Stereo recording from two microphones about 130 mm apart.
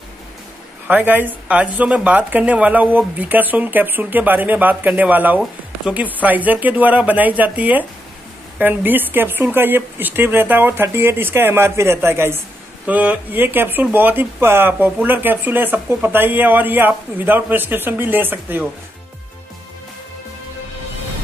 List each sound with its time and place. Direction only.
0.8 s speech: 15° right (ahead or behind)